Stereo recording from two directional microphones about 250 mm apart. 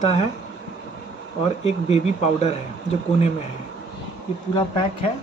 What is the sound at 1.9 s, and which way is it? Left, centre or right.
Speech, left.